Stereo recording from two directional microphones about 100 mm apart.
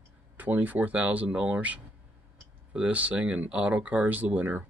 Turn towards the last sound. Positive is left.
turn(degrees=-20)  # may be behind; listen again after turning